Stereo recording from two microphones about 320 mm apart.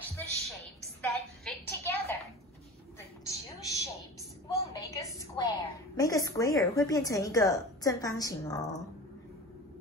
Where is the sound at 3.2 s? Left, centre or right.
Centre.